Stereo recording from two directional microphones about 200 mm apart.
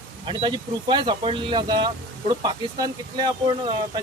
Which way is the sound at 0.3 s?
25° right (ahead or behind).